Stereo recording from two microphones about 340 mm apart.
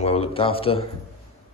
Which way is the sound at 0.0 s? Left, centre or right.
Centre.